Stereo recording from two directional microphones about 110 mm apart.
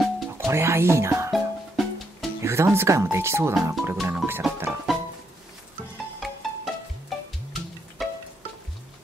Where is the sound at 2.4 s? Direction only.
25° right (ahead or behind).